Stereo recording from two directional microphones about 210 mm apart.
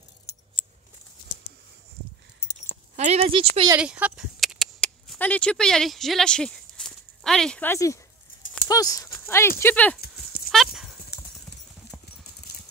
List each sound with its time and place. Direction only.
3.0 s speech: 30° right (ahead or behind)
3.8 s speech: 5° right (ahead or behind)
9.9 s a sound: 45° left (ahead or behind)
10.5 s clip-clop: centre (ahead or behind)
11.1 s clip-clop: 50° left (ahead or behind)